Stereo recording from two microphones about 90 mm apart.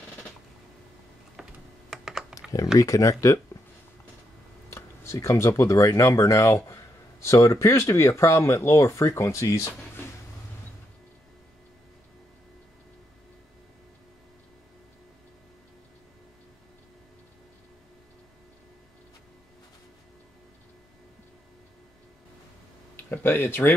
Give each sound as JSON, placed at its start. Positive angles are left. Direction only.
{"t": 1.3, "sound": "typing", "side_deg": -5}
{"t": 2.8, "sound": "speech", "side_deg": 35}
{"t": 4.6, "sound": "speech", "side_deg": 35}
{"t": 23.2, "sound": "speech", "side_deg": 25}